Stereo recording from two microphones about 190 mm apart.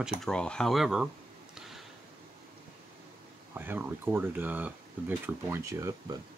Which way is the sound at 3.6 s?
10° right (ahead or behind).